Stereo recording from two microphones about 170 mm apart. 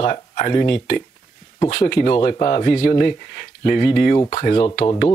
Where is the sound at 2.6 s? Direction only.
55° left (ahead or behind).